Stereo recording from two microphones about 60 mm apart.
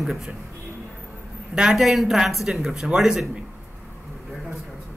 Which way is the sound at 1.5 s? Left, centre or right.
Centre.